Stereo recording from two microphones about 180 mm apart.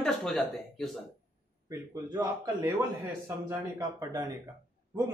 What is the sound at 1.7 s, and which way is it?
A man's voice, 20° right (ahead or behind).